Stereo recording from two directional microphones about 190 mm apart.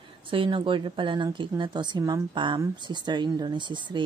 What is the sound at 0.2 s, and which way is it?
Speech, 25° right (ahead or behind).